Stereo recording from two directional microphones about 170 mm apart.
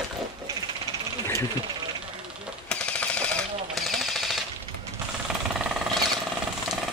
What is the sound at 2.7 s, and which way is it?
Machine gun, 5° left (ahead or behind).